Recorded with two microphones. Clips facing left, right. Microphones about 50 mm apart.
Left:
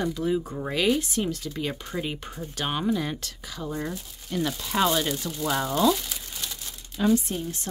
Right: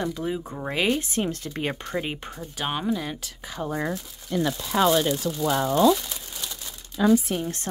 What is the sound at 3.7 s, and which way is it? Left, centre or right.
Speech, right.